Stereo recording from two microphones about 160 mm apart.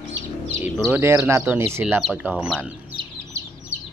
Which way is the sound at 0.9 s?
15° right (ahead or behind).